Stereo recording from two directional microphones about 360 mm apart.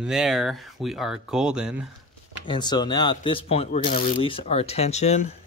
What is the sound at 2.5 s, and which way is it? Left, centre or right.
Speech, centre.